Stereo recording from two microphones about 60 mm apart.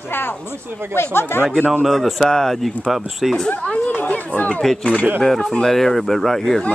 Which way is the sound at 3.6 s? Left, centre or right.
Centre.